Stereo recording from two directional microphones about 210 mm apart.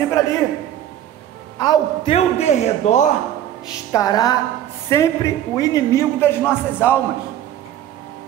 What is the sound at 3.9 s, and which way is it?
Music, 15° left (ahead or behind).